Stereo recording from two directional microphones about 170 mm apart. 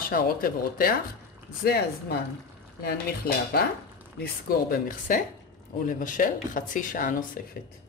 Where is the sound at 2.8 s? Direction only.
65° left (ahead or behind).